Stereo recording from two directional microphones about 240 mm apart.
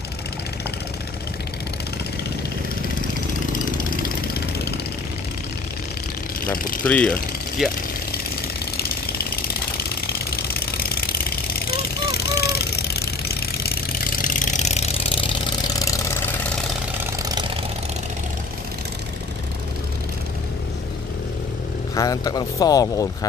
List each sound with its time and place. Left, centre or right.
3.7 s engine: left
6.5 s speech: left
6.8 s speech: centre
8.7 s jackhammer: left
10.3 s engine: left
11.7 s vehicle: left; by 15.9 s centre
17.2 s vehicle: centre
21.9 s speech: centre